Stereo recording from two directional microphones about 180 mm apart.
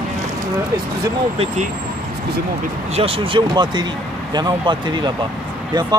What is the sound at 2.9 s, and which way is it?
Speech, 30° right (ahead or behind).